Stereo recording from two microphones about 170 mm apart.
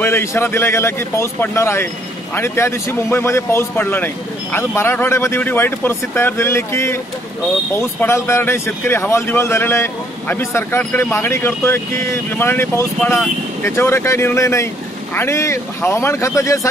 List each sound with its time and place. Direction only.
0.0 s speech: 15° left (ahead or behind)